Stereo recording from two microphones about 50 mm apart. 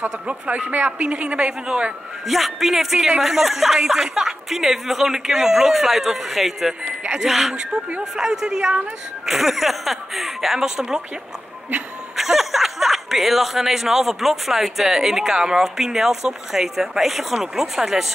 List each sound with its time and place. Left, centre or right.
0.3 s speech: right
2.2 s a woman's voice: centre
6.8 s speech: right
7.2 s a woman's voice: centre
9.2 s speech: centre
12.2 s speech: centre